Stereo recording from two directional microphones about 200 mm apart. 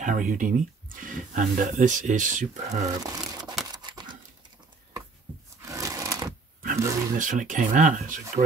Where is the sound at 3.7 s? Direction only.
20° right (ahead or behind).